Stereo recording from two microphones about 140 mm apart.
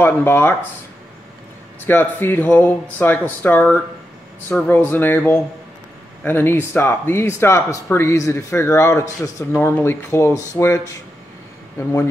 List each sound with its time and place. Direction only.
0.0 s speech: 15° left (ahead or behind)
1.9 s speech: 15° left (ahead or behind)